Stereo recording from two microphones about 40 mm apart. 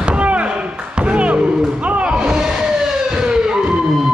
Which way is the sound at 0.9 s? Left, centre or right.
Right.